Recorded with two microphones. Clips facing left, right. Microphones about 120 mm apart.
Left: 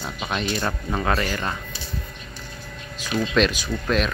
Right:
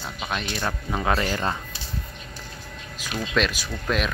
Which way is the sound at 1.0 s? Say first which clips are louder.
Right 1 dB; 20° right (ahead or behind).